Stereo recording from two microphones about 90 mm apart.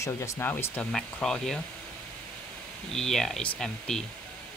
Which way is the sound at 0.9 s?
5° left (ahead or behind).